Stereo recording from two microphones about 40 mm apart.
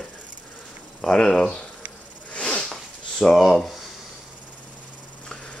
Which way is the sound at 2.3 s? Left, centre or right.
Left.